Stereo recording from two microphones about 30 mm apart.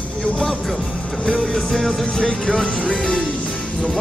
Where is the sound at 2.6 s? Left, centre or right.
Left.